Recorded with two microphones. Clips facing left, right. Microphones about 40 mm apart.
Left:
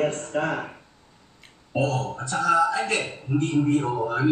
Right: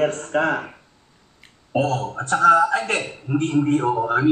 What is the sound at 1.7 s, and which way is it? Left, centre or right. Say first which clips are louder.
Speech: right 3 dB; right.